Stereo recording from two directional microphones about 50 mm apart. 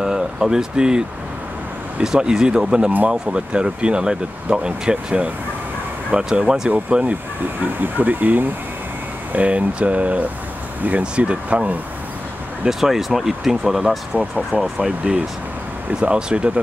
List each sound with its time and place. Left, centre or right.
0.0 s speech: centre
2.0 s speech: centre
7.6 s speech: right
12.6 s speech: centre
14.1 s speech: right